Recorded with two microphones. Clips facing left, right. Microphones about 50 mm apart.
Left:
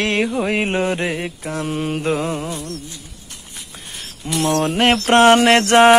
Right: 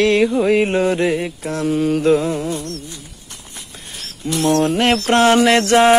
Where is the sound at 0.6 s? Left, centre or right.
Left.